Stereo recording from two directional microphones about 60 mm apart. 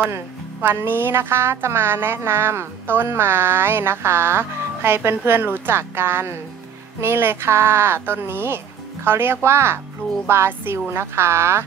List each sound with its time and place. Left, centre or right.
0.1 s a woman's voice: right